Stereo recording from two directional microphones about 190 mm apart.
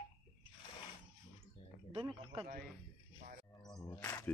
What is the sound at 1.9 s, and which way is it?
Speech, 30° right (ahead or behind).